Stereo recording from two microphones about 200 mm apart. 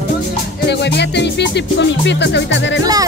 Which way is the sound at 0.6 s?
60° left (ahead or behind).